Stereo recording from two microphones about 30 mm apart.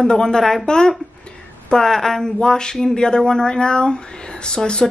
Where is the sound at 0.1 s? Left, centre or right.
Left.